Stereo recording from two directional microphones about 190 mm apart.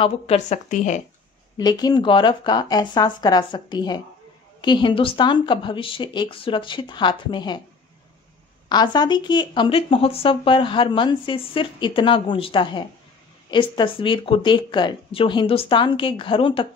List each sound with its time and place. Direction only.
0.0 s a woman's voice: 35° left (ahead or behind)
1.6 s speech: 20° left (ahead or behind)
8.6 s speech: 20° left (ahead or behind)